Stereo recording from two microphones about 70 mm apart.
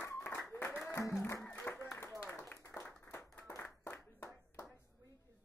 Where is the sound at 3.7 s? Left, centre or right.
Left.